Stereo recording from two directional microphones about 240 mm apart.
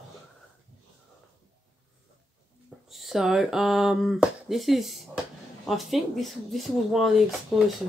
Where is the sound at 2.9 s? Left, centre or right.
Centre.